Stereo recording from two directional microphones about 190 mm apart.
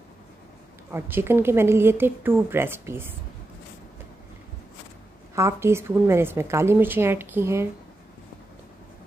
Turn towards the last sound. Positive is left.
turn(degrees=-15)  # may be behind; listen again after turning